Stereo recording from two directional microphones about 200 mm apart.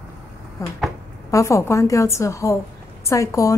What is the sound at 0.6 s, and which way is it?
A woman's voice, 15° left (ahead or behind).